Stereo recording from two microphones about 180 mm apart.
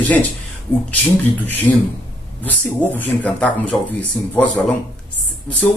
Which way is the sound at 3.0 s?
10° left (ahead or behind).